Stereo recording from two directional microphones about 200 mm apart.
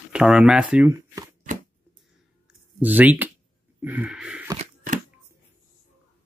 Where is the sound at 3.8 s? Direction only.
10° right (ahead or behind).